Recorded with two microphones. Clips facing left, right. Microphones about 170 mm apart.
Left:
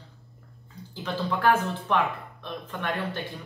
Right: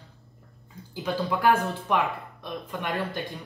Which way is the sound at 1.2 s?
10° right (ahead or behind).